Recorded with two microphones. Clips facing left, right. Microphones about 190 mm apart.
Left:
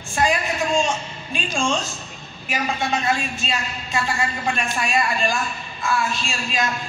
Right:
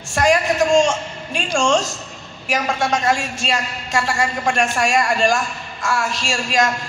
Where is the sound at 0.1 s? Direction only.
85° right.